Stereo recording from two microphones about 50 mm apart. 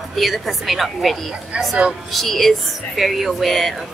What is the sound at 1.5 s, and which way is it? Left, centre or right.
Speech, right.